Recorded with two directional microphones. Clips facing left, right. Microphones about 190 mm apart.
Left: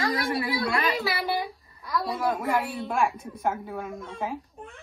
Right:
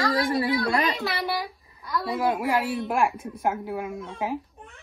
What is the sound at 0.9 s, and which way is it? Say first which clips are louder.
A child's voice: left 1 dB; centre (ahead or behind).